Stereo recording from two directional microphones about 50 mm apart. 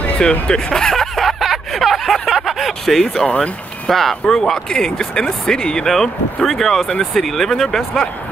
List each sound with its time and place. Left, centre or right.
0.2 s speech: centre
0.9 s a sound: centre
3.3 s speech: left
3.9 s speech: centre
5.9 s speech: centre